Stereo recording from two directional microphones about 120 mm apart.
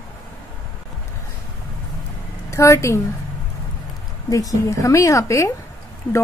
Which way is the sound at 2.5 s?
25° left (ahead or behind).